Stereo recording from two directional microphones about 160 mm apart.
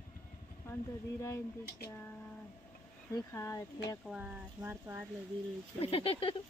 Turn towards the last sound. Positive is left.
turn(degrees=35)  # may be behind; listen again after turning